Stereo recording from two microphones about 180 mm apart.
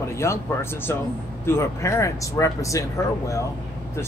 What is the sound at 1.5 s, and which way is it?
Speech, 15° left (ahead or behind).